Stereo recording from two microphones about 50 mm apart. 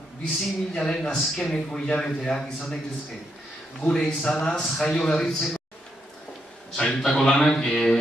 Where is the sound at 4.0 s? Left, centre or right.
Centre.